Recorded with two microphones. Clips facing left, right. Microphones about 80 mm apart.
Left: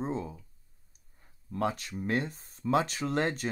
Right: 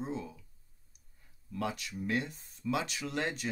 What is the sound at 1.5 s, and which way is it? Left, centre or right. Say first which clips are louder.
Speech: left 5 dB; left.